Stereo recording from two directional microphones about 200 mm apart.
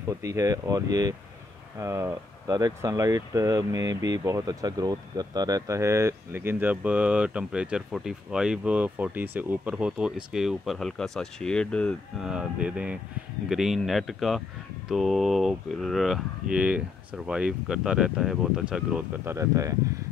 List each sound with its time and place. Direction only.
0.2 s speech: 15° right (ahead or behind)